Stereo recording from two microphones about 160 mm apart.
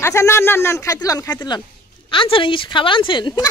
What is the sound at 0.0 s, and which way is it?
A woman's voice, 15° left (ahead or behind).